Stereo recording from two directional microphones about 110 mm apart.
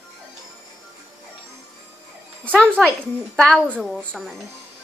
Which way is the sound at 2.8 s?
Centre (ahead or behind).